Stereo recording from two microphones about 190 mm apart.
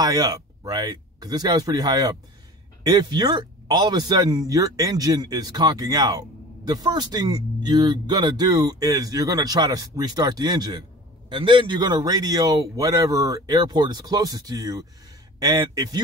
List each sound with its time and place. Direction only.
0.0 s speech: 20° right (ahead or behind)